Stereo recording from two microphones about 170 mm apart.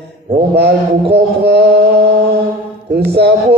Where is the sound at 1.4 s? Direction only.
80° right.